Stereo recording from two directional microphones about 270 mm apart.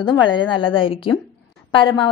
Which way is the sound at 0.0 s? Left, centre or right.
Centre.